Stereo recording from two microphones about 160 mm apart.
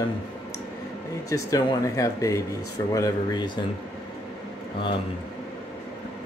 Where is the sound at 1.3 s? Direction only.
20° left (ahead or behind).